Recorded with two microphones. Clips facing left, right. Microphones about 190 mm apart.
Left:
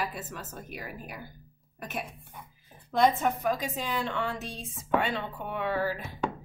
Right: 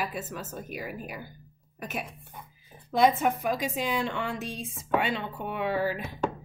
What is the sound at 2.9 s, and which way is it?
A woman's voice, 10° right (ahead or behind).